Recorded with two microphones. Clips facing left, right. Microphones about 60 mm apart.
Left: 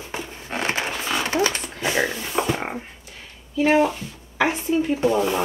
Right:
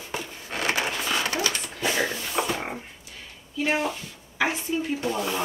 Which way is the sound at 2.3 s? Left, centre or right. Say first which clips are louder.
Left 4 dB; centre.